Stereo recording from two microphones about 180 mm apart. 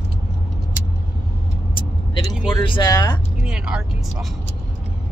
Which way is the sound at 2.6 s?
25° left (ahead or behind).